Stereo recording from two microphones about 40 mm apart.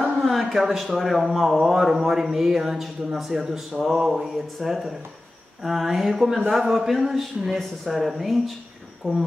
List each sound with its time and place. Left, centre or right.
0.0 s a sound: centre
1.3 s speech: centre
9.0 s speech: left